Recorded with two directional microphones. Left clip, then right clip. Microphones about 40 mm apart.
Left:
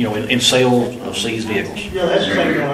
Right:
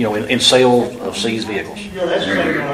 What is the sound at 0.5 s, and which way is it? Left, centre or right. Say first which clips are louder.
Speech: right 4 dB; right.